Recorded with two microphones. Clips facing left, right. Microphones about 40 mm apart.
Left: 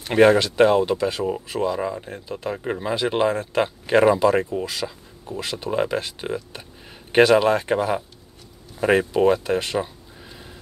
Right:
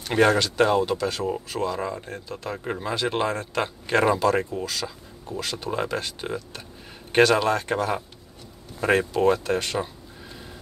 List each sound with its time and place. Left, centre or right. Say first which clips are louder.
0.0 s speech: left 4 dB; centre